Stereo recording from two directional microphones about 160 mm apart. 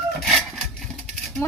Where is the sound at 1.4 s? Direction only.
15° left (ahead or behind).